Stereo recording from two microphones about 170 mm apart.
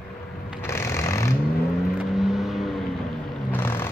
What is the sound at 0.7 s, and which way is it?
Sewing machine, 15° left (ahead or behind).